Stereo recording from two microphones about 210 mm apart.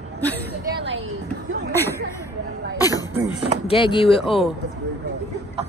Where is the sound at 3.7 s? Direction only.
25° left (ahead or behind).